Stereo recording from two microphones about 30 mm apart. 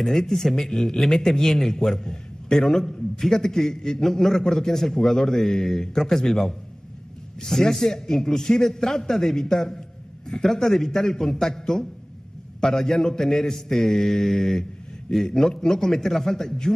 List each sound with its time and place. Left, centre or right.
0.0 s a man's voice: centre